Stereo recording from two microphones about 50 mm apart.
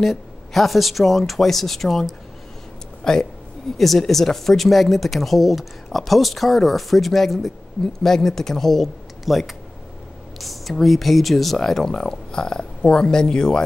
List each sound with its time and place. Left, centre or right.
0.0 s speech: centre
3.0 s a man's voice: centre